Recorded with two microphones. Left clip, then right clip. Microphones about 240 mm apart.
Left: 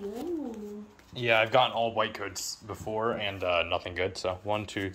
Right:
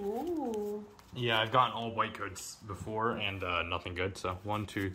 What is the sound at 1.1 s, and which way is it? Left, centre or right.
Speech, right.